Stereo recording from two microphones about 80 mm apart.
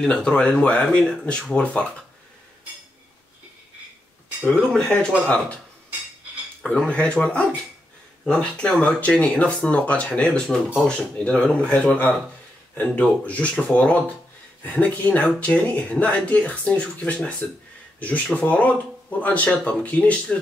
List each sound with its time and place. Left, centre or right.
0.0 s speech: centre
4.5 s speech: centre
6.6 s speech: centre